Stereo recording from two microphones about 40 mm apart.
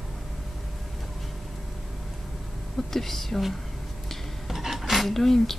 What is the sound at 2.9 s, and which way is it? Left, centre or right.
Speech, centre.